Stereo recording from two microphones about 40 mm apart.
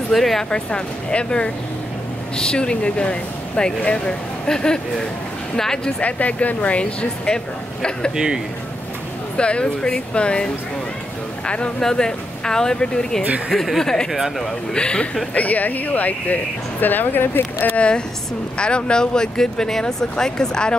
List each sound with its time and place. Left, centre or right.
0.1 s speech: centre
0.5 s speech: left
5.9 s speech: left
9.4 s speech: left
13.5 s speech: centre
14.7 s speech: left
15.3 s speech: left
17.7 s speech: left